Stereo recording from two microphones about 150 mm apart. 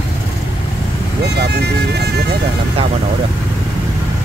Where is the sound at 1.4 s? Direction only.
90° right.